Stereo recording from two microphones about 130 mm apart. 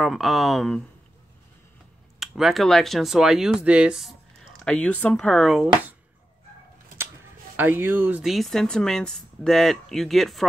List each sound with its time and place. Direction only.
0.0 s speech: centre (ahead or behind)
2.1 s speech: centre (ahead or behind)
4.6 s speech: 10° left (ahead or behind)
7.5 s speech: 15° right (ahead or behind)
8.2 s speech: centre (ahead or behind)